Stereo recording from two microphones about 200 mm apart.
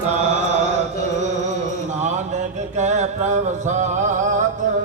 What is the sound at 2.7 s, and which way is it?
Music, 35° right (ahead or behind).